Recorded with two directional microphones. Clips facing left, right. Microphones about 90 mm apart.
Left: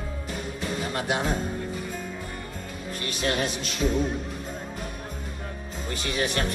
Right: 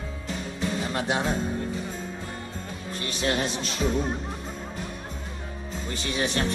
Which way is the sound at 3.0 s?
35° right (ahead or behind).